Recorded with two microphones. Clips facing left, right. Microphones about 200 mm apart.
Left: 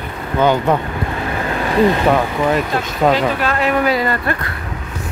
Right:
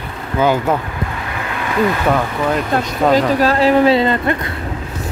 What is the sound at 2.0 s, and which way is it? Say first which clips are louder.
Speech: left 2 dB; 5° left (ahead or behind).